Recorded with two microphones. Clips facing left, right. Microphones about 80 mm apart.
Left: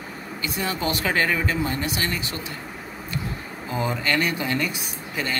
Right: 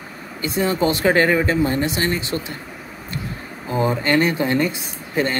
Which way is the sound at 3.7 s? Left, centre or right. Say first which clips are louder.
Right 6 dB; right.